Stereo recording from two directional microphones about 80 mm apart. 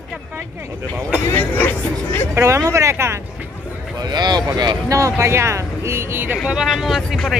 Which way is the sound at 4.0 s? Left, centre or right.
Right.